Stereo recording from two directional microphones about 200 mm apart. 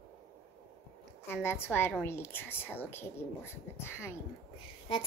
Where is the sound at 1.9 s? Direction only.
10° left (ahead or behind).